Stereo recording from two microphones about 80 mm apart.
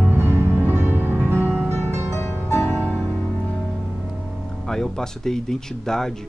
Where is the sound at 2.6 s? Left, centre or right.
Left.